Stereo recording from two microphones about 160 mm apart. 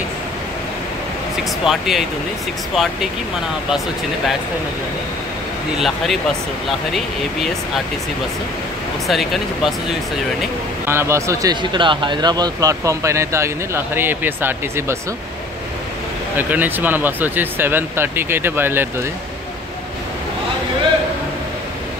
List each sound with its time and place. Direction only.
1.6 s speech: centre (ahead or behind)
5.8 s speech: centre (ahead or behind)
9.0 s speech: centre (ahead or behind)
10.9 s speech: 15° right (ahead or behind)
11.7 s speech: 30° right (ahead or behind); by 15.0 s 15° right (ahead or behind)
16.3 s speech: 10° right (ahead or behind)